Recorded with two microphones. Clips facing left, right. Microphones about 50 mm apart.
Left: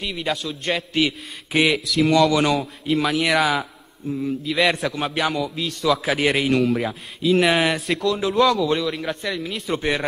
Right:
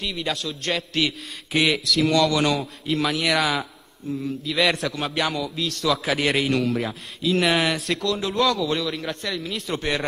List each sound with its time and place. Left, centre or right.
0.0 s a man's voice: centre